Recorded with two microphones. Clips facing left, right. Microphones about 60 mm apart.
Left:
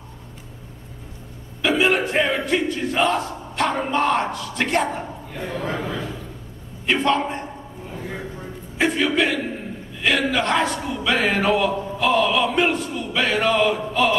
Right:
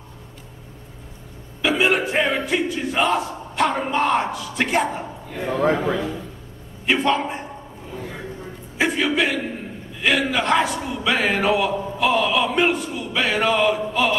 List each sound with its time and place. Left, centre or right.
1.6 s speech: centre
5.6 s a man's voice: right
6.9 s a man's voice: centre
8.7 s a sound: centre
10.0 s a man's voice: centre